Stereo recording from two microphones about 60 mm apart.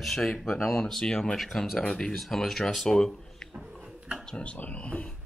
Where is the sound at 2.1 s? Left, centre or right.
Centre.